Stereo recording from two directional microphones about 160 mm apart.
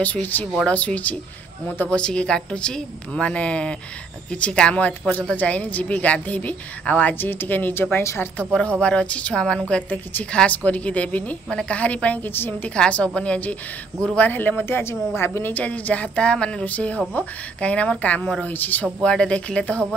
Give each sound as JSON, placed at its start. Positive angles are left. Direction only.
{"t": 0.0, "sound": "a woman's voice", "side_deg": 10}
{"t": 8.5, "sound": "a woman's voice", "side_deg": 5}